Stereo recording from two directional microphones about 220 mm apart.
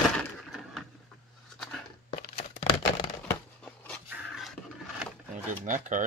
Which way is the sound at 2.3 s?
30° left (ahead or behind).